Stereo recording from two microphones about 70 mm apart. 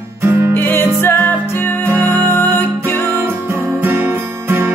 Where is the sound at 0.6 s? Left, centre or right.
Left.